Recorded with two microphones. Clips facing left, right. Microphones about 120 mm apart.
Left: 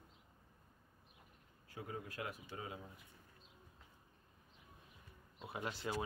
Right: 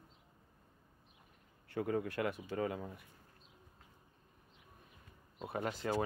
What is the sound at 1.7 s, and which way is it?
Speech, 70° right (ahead or behind).